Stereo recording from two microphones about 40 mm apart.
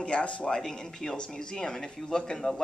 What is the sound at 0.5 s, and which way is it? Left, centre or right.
Speech, centre.